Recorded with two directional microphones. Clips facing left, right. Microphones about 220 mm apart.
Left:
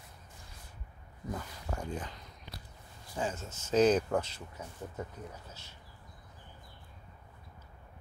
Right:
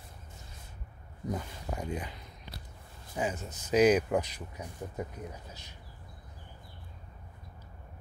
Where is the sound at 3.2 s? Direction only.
15° right (ahead or behind).